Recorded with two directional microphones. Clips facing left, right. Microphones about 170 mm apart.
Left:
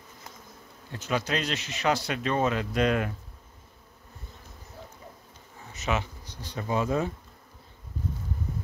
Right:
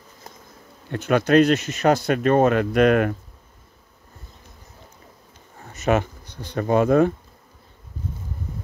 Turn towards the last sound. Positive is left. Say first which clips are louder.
# right 10 dB
turn(degrees=-60)  # may be behind; listen again after turning